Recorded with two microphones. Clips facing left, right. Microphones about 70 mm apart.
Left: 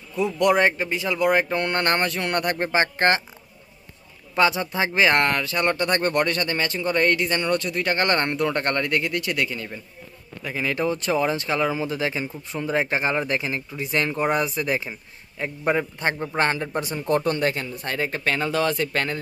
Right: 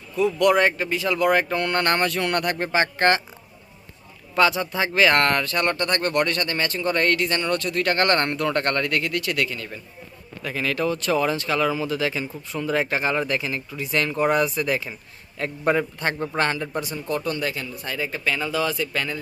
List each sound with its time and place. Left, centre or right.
0.1 s speech: centre
4.4 s speech: left
5.3 s speech: centre
15.3 s speech: centre
16.3 s a man's voice: left